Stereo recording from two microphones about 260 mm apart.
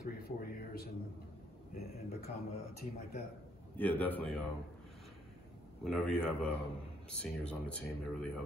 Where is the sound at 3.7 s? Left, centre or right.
Centre.